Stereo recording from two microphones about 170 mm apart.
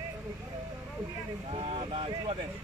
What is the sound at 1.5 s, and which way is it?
Vehicle, 35° right (ahead or behind).